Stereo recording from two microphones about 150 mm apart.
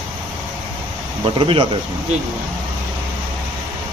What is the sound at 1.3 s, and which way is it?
Speech, 35° right (ahead or behind).